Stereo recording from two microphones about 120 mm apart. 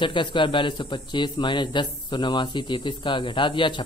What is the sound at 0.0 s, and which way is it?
Speech, 40° left (ahead or behind).